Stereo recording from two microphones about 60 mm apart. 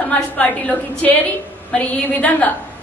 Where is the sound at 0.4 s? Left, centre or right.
Left.